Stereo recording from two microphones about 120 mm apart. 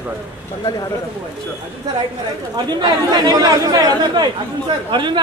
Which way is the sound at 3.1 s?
30° right (ahead or behind).